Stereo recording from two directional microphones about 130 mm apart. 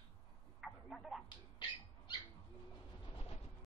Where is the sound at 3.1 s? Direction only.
50° left (ahead or behind).